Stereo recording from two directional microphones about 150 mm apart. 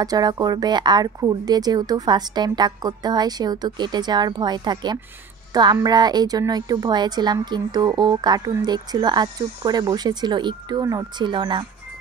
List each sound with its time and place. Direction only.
0.0 s a woman's voice: 25° right (ahead or behind)